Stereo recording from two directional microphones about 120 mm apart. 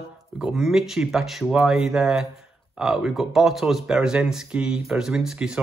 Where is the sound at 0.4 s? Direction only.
5° right (ahead or behind).